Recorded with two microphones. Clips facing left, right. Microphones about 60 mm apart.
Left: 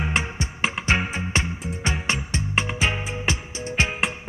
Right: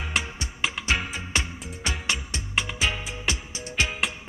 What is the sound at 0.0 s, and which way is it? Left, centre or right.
Music, left.